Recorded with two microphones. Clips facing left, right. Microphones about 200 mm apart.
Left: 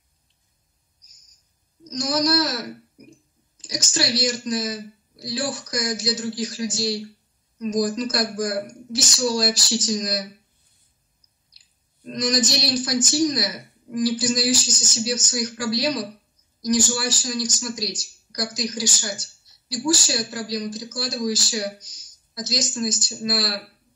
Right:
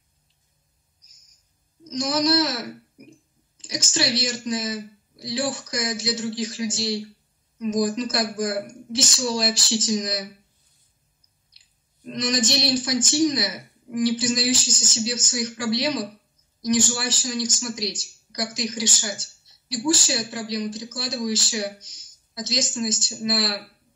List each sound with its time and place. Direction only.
1.9 s speech: 25° right (ahead or behind)
11.5 s speech: 25° right (ahead or behind)